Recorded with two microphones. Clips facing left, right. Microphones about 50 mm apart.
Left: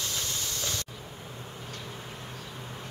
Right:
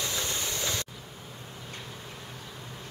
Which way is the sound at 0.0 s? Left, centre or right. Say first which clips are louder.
Right 2 dB; right.